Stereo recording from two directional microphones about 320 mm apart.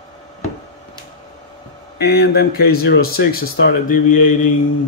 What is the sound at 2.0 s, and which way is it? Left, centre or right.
Speech, left.